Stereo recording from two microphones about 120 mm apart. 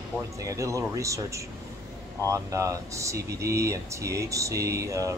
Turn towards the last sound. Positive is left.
turn(degrees=-25)  # may be behind; listen again after turning